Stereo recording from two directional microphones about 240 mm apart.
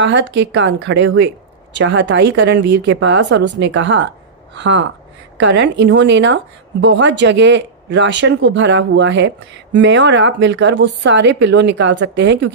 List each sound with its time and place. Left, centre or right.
0.0 s speech: right
5.4 s speech: right